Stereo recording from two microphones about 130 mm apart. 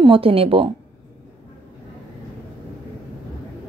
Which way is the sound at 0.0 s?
45° right (ahead or behind).